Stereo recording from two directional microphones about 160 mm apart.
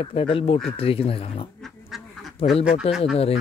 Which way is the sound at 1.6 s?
Centre (ahead or behind).